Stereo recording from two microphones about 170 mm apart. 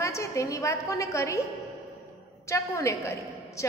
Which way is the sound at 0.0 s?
15° left (ahead or behind).